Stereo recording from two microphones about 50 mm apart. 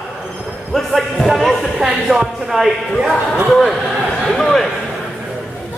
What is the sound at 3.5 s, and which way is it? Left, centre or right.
A man's voice, centre.